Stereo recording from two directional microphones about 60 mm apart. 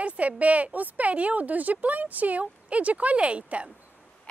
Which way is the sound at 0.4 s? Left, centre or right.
Right.